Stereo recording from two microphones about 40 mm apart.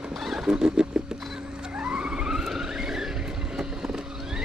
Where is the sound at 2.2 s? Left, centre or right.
Centre.